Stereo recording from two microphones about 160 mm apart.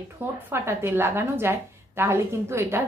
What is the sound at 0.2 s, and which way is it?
A woman's voice, 15° right (ahead or behind).